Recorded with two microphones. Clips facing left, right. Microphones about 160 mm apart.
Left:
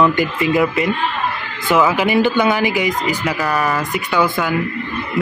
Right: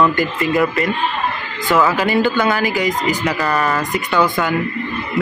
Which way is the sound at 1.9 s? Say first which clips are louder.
Left 1 dB; 15° left (ahead or behind).